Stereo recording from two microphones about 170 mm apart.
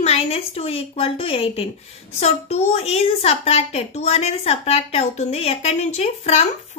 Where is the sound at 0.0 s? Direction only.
35° left (ahead or behind).